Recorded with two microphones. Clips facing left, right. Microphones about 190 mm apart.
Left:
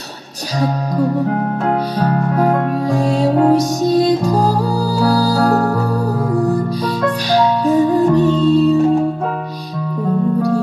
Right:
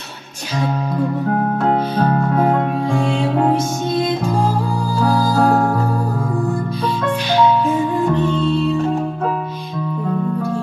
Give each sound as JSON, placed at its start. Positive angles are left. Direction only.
{"t": 0.6, "sound": "music", "side_deg": 35}